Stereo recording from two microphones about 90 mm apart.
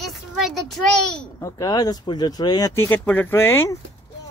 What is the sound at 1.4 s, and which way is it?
Speech, 40° left (ahead or behind).